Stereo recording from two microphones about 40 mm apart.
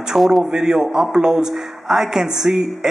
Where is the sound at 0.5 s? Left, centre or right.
Centre.